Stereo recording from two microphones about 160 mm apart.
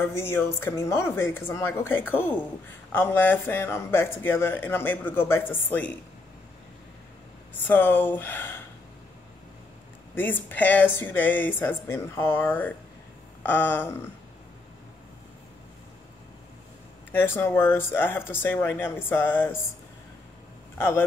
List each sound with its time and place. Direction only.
0.0 s speech: 15° left (ahead or behind)
7.6 s speech: 15° left (ahead or behind)
10.1 s speech: 10° left (ahead or behind)
17.1 s speech: 15° left (ahead or behind)
20.7 s speech: 15° left (ahead or behind)